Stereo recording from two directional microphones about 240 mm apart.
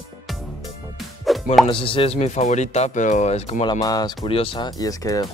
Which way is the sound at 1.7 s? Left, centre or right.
Left.